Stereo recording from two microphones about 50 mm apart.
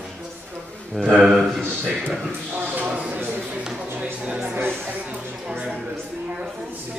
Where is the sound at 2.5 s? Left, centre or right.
Right.